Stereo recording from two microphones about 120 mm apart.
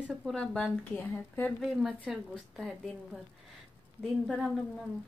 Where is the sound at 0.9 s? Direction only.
15° left (ahead or behind).